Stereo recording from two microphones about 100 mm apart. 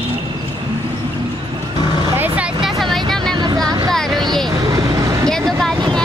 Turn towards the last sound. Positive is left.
turn(degrees=5)  # may be behind; listen again after turning